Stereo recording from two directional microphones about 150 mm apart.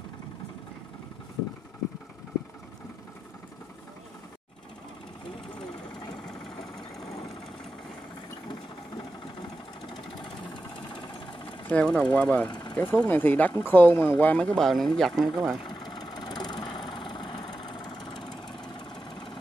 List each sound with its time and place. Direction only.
8.5 s engine: 35° left (ahead or behind)
10.2 s vehicle: 5° left (ahead or behind)
11.6 s speech: 5° left (ahead or behind)
12.4 s speech: 30° left (ahead or behind)
12.7 s speech: 10° left (ahead or behind)
15.6 s vehicle: 30° left (ahead or behind)